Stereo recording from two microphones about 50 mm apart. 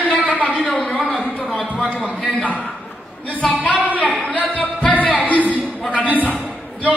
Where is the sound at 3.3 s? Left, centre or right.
Left.